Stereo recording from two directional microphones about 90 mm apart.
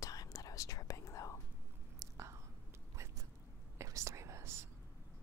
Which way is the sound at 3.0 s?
30° right (ahead or behind).